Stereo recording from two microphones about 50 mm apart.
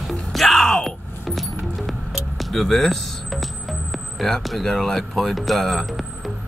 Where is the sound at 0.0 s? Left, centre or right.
Centre.